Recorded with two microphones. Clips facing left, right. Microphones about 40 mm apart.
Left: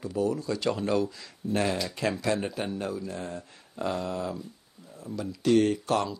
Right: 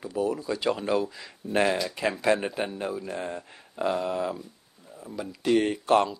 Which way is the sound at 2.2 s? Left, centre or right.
Right.